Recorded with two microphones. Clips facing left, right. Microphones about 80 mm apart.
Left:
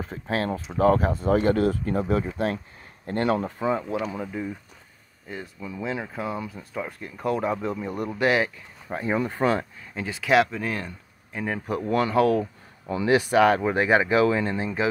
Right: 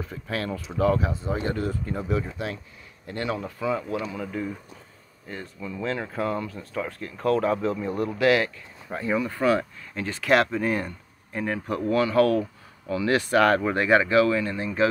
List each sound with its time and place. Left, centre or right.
0.0 s speech: left
3.4 s speech: left
4.1 s speech: centre
9.9 s speech: centre
11.4 s speech: centre
11.9 s speech: left